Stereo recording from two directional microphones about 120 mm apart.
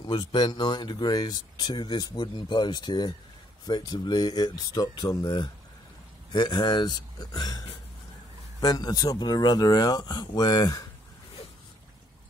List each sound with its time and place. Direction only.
0.0 s speech: 35° left (ahead or behind)